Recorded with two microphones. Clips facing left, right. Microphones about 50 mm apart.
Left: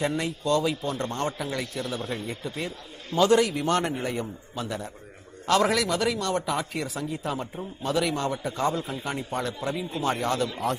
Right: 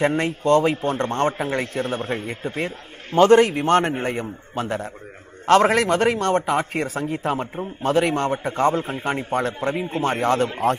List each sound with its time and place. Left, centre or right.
0.0 s a man's voice: right